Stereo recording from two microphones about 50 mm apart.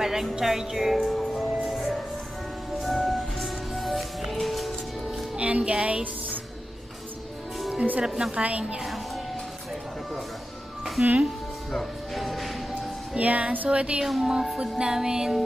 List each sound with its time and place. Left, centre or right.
0.0 s music: centre
2.8 s music: centre
5.4 s a woman's voice: right
8.0 s a woman's voice: centre
8.8 s music: centre
11.0 s a woman's voice: right
11.7 s music: centre
13.1 s music: right
13.7 s a woman's voice: right
14.0 s speech: centre
14.6 s music: centre